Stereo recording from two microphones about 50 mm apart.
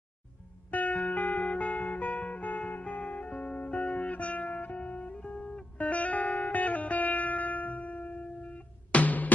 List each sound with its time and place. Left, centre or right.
0.7 s music: left